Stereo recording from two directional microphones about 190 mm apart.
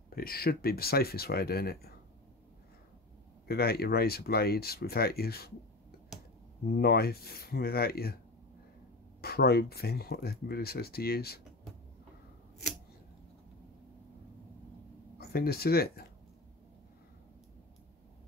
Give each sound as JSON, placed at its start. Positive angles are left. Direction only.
{"t": 0.1, "sound": "speech", "side_deg": 50}
{"t": 3.4, "sound": "speech", "side_deg": 55}
{"t": 9.2, "sound": "speech", "side_deg": 55}
{"t": 15.1, "sound": "speech", "side_deg": 55}